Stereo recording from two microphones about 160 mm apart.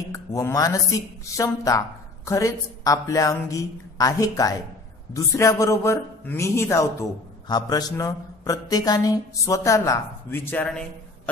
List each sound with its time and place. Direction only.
0.1 s speech: 20° left (ahead or behind)